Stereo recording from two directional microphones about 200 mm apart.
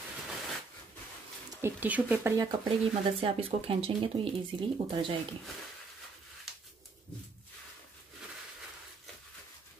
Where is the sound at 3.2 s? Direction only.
30° right (ahead or behind).